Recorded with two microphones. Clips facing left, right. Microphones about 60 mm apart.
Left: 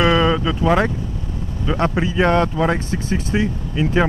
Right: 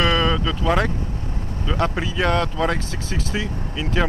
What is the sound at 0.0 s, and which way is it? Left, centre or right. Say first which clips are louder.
Vehicle: left 4 dB; left.